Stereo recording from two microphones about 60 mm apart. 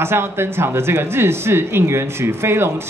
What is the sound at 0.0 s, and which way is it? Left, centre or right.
Speech, right.